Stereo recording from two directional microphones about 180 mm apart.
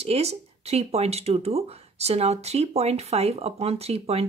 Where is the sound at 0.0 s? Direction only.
35° right (ahead or behind).